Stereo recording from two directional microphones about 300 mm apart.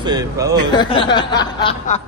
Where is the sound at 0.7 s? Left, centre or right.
Centre.